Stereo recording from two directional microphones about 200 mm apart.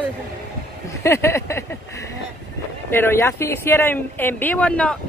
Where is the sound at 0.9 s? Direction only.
15° left (ahead or behind).